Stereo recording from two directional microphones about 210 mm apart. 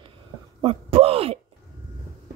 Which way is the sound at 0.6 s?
25° right (ahead or behind).